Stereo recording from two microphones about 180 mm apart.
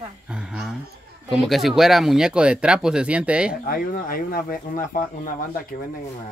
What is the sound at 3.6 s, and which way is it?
Speech, 55° left (ahead or behind).